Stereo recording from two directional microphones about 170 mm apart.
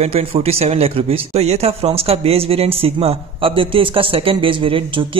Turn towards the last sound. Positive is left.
turn(degrees=-30)  # may be behind; listen again after turning